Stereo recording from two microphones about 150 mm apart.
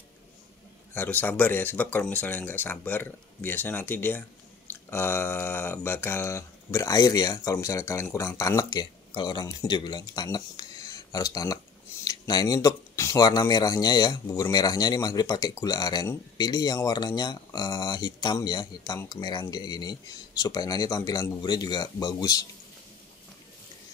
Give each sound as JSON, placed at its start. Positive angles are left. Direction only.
{"t": 0.9, "sound": "speech", "side_deg": 10}